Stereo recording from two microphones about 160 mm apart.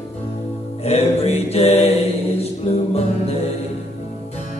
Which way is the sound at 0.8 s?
40° left (ahead or behind).